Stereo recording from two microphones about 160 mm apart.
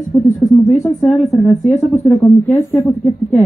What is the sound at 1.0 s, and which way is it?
Speech, centre (ahead or behind).